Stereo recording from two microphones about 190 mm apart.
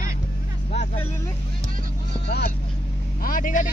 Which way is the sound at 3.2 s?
45° left (ahead or behind).